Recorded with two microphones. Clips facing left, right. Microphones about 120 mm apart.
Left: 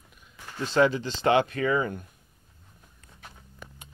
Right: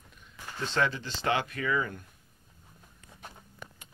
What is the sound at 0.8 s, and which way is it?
Speech, 20° left (ahead or behind).